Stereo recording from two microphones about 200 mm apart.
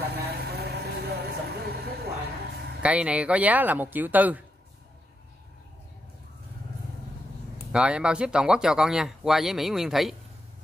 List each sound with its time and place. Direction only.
0.0 s vehicle: 55° right (ahead or behind)
2.8 s speech: 5° right (ahead or behind)
7.7 s speech: 5° right (ahead or behind)